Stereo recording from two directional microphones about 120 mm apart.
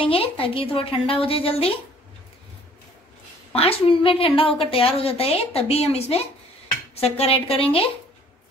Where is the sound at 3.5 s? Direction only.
55° left (ahead or behind).